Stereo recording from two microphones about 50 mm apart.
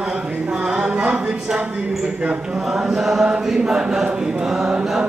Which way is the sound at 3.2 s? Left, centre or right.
Centre.